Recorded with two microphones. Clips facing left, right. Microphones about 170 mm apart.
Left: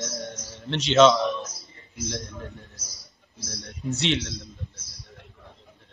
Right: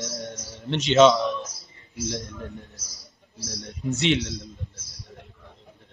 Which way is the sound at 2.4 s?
Centre (ahead or behind).